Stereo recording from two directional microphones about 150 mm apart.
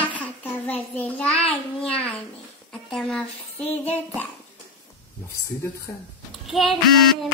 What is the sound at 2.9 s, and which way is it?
Speech, centre (ahead or behind).